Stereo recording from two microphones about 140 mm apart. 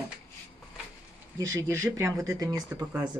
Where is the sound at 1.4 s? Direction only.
20° right (ahead or behind).